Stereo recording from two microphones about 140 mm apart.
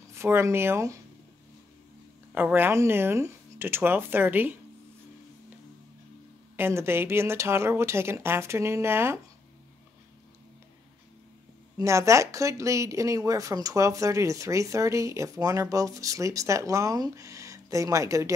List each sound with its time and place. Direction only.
0.1 s speech: 20° right (ahead or behind)
2.3 s speech: 15° right (ahead or behind)
6.5 s speech: 15° right (ahead or behind)
11.8 s speech: 20° right (ahead or behind)